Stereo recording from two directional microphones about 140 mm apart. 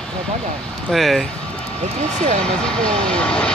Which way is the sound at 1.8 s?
55° right (ahead or behind).